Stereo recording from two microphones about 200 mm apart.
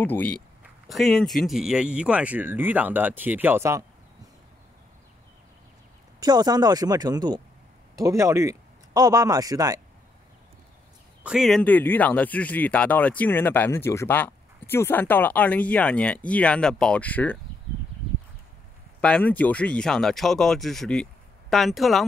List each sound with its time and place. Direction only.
0.0 s speech: 10° left (ahead or behind); by 3.8 s 15° right (ahead or behind)
6.1 s speech: 20° right (ahead or behind)
11.2 s speech: centre (ahead or behind)
18.9 s speech: 5° left (ahead or behind)